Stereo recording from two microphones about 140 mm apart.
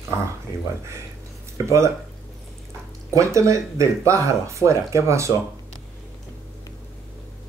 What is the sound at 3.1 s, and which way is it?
Speech, 20° right (ahead or behind).